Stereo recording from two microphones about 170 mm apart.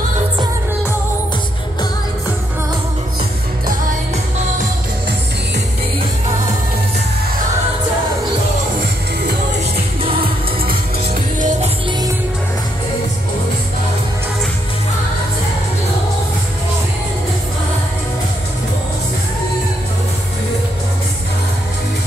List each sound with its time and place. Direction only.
11.3 s music: 50° right (ahead or behind)